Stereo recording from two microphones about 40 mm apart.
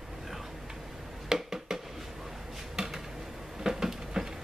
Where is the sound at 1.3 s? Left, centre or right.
Centre.